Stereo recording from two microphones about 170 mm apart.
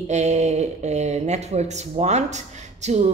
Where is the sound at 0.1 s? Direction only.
40° right (ahead or behind).